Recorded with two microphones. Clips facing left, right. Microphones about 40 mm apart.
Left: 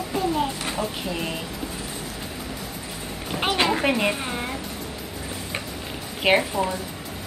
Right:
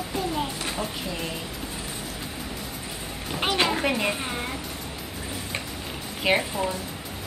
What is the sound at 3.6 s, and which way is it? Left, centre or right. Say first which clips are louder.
Speech: left 3 dB; centre.